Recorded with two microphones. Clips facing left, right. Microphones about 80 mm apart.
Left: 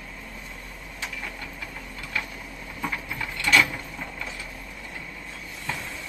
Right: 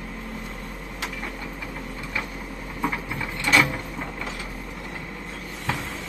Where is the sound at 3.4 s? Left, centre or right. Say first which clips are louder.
Right 1 dB; right.